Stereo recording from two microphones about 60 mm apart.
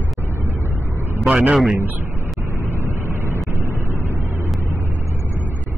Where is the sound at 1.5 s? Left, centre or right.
Centre.